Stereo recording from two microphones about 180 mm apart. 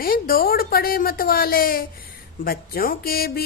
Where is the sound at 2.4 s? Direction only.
55° left (ahead or behind).